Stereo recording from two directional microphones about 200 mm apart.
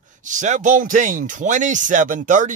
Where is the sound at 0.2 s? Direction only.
40° right (ahead or behind).